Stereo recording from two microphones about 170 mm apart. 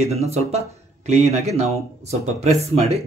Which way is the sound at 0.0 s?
40° right (ahead or behind).